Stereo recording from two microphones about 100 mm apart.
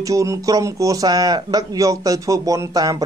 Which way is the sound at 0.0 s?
35° right (ahead or behind).